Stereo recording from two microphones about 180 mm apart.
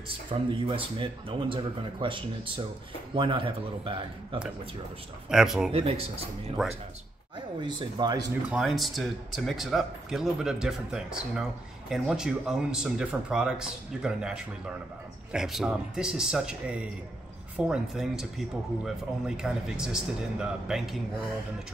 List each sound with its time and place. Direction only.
0.3 s speech: 30° right (ahead or behind)
5.3 s speech: 5° right (ahead or behind)
5.7 s speech: 35° right (ahead or behind)
8.5 s speech: centre (ahead or behind)
19.2 s speech: 5° right (ahead or behind)